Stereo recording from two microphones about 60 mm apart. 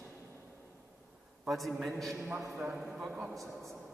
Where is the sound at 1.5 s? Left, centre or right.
Centre.